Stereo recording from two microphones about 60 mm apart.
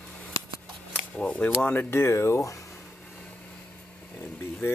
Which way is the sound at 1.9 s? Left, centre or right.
Left.